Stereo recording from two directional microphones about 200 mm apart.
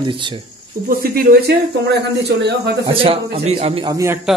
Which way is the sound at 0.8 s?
50° right (ahead or behind).